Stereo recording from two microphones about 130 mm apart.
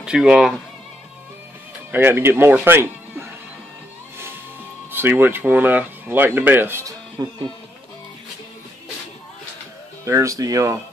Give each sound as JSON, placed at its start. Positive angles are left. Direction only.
{"t": 0.0, "sound": "speech", "side_deg": -5}
{"t": 1.9, "sound": "speech", "side_deg": -15}
{"t": 4.9, "sound": "speech", "side_deg": -15}
{"t": 10.0, "sound": "speech", "side_deg": -25}